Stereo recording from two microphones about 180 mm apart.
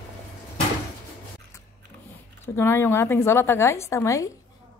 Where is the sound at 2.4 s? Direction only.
15° left (ahead or behind).